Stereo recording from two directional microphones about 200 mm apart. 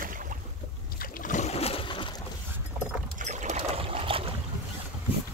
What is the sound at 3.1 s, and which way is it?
Boat, 35° right (ahead or behind).